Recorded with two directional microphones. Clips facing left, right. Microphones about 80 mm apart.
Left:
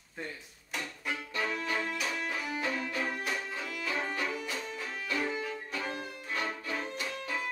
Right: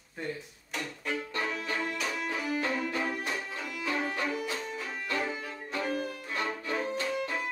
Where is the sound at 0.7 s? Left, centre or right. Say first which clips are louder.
Right 3 dB; centre.